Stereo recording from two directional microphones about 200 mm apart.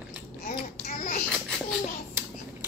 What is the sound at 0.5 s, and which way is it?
Child singing, 35° left (ahead or behind).